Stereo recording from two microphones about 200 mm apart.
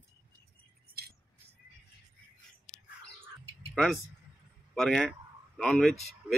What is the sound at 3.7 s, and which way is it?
Speech, centre (ahead or behind).